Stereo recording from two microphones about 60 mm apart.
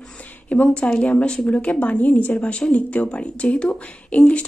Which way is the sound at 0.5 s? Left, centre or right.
Left.